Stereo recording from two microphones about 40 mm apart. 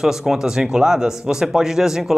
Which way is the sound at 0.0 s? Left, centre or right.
Centre.